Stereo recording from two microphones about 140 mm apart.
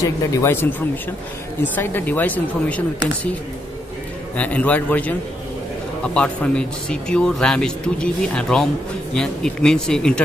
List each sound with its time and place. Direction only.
0.0 s speech: 20° left (ahead or behind)
4.4 s speech: 10° left (ahead or behind)